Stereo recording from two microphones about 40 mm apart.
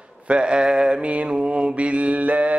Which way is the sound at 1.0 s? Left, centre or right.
Right.